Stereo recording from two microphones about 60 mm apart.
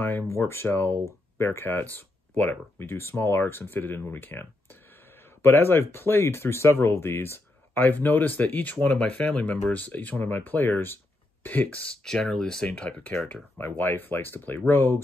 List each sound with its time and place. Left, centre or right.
0.0 s speech: left
2.8 s speech: left
8.9 s speech: centre
11.8 s speech: centre
13.6 s speech: left